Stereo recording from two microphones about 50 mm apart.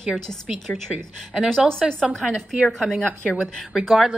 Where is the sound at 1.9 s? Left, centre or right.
Centre.